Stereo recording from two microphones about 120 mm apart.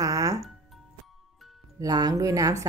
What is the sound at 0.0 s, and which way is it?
Music, 30° right (ahead or behind).